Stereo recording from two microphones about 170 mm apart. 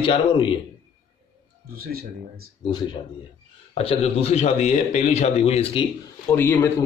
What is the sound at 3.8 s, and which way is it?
A man's voice, 35° left (ahead or behind).